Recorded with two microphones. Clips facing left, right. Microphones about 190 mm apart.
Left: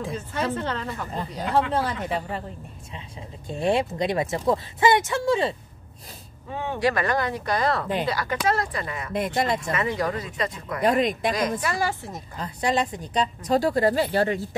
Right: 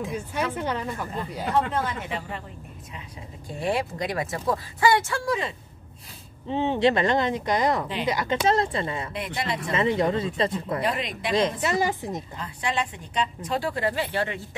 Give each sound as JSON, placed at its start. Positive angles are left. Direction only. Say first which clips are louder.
{"t": 0.1, "sound": "speech", "louder": "left 1 dB", "side_deg": -10}
{"t": 1.5, "sound": "a woman's voice", "louder": "left 2 dB", "side_deg": 35}
{"t": 3.4, "sound": "speech", "louder": "left 4 dB", "side_deg": 25}
{"t": 6.5, "sound": "speech", "louder": "right 3 dB", "side_deg": -25}
{"t": 9.1, "sound": "speech", "louder": "left 6 dB", "side_deg": 45}
{"t": 9.7, "sound": "speech", "louder": "right 3 dB", "side_deg": -25}
{"t": 10.8, "sound": "speech", "louder": "left 12 dB", "side_deg": 45}
{"t": 11.3, "sound": "speech", "louder": "right 2 dB", "side_deg": -25}
{"t": 12.4, "sound": "a woman's voice", "louder": "left 6 dB", "side_deg": 40}